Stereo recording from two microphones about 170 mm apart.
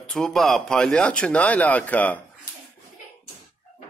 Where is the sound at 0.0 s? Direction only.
5° left (ahead or behind).